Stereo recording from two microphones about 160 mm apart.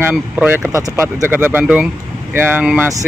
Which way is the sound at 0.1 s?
5° right (ahead or behind).